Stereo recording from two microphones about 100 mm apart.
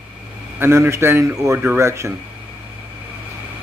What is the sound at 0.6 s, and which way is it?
A man's voice, 25° right (ahead or behind).